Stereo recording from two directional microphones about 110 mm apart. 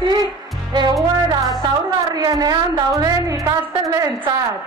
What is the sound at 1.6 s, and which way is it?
A woman's voice, 35° right (ahead or behind).